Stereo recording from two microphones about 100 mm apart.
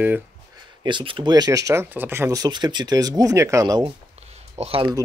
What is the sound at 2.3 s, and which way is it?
Speech, 40° right (ahead or behind).